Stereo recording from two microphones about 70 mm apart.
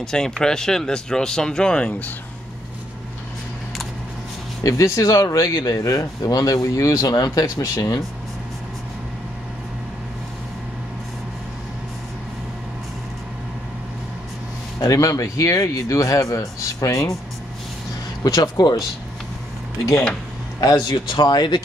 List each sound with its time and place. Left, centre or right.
0.0 s speech: centre
4.6 s speech: left
7.6 s speech: left
14.8 s speech: left
18.2 s speech: left
20.6 s speech: left